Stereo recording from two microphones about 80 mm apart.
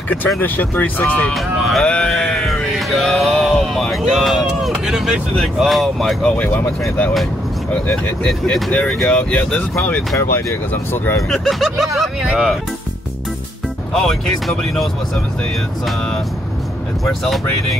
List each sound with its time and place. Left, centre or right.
0.4 s speech: left
1.3 s speech: centre
1.9 s music: centre
6.2 s speech: centre
7.7 s speech: centre
10.7 s speech: left
11.2 s speech: centre
13.9 s speech: centre
17.0 s speech: centre